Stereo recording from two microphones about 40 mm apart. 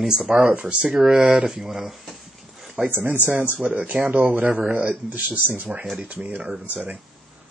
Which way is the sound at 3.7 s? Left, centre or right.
Right.